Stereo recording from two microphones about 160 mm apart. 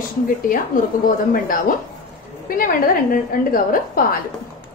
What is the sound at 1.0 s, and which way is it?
A woman's voice, 60° left (ahead or behind).